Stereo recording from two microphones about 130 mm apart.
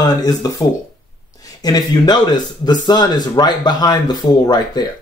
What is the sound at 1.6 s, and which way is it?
Speech, 30° left (ahead or behind).